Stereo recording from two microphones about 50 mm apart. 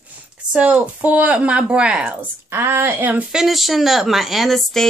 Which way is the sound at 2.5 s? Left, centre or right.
Right.